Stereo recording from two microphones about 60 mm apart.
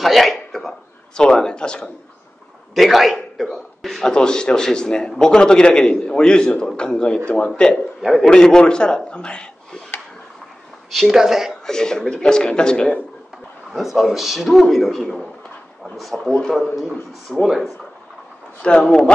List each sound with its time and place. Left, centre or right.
0.0 s a sound: centre
2.7 s a man's voice: centre
10.9 s speech: centre
11.6 s a man's voice: centre
13.7 s a man's voice: centre
16.8 s a man's voice: centre
18.6 s a man's voice: centre